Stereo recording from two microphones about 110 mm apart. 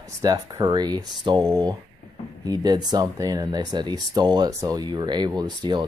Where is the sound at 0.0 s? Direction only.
35° right (ahead or behind).